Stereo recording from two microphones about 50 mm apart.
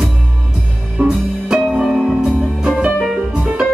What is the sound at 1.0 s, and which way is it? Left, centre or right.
Music, right.